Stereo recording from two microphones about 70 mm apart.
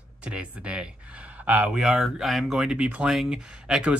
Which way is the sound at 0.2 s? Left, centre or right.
Centre.